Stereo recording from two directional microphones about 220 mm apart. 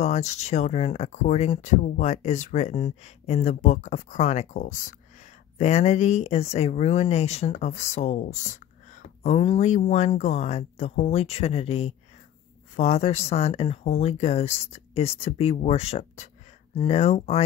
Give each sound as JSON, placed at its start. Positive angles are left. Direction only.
{"t": 0.0, "sound": "speech", "side_deg": 30}